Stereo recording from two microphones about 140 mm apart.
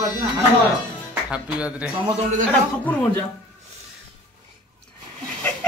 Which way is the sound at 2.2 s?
60° right (ahead or behind).